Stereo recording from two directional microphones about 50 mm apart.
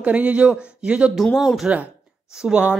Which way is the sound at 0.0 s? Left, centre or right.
Right.